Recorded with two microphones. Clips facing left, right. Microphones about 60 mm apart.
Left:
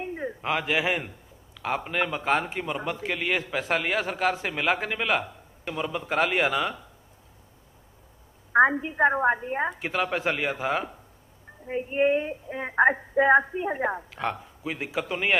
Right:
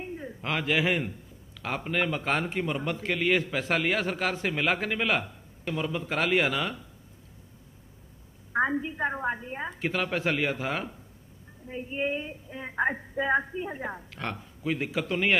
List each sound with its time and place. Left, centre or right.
0.0 s a sound: left
0.4 s a man's voice: centre
8.5 s a woman's voice: left
9.8 s speech: centre
11.6 s a woman's voice: left
14.1 s speech: centre